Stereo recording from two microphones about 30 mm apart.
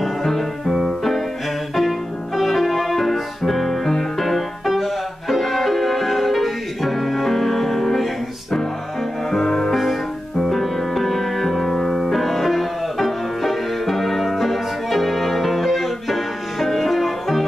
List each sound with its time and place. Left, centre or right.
0.7 s music: centre